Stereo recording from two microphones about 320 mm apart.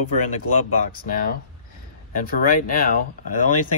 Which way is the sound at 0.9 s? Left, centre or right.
Left.